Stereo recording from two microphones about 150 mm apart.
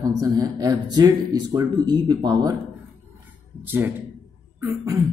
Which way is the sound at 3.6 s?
15° right (ahead or behind).